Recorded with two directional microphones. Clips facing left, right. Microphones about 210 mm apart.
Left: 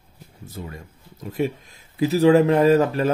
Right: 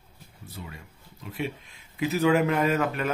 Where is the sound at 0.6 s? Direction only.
40° left (ahead or behind).